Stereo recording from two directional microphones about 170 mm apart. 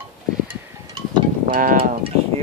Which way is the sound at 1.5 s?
55° right (ahead or behind).